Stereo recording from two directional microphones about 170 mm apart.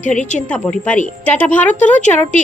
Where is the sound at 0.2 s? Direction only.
45° left (ahead or behind).